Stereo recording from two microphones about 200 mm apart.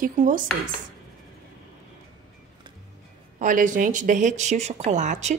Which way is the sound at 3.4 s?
40° right (ahead or behind).